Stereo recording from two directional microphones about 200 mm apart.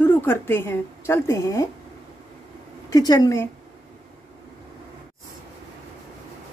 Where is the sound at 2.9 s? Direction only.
20° left (ahead or behind).